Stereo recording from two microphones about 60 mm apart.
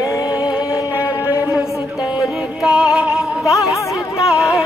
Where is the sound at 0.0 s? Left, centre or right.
Left.